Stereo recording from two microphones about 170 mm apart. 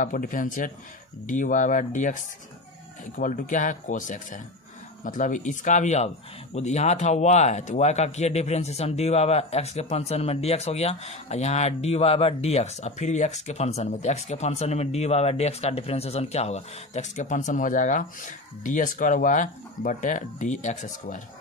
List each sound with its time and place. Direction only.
0.0 s speech: 50° left (ahead or behind)